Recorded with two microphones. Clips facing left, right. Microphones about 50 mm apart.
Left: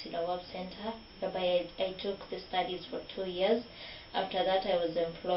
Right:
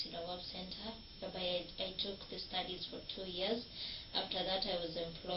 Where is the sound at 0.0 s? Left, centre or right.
Left.